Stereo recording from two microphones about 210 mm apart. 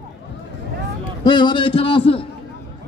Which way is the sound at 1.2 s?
20° left (ahead or behind).